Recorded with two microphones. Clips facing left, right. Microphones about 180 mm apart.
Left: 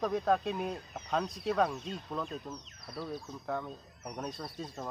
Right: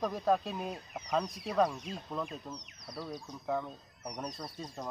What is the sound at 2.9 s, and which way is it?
Speech, 15° right (ahead or behind).